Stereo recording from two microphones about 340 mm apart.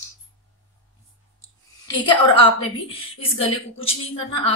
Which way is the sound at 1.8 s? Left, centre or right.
Centre.